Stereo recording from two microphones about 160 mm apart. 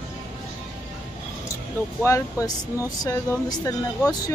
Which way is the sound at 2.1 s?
20° left (ahead or behind).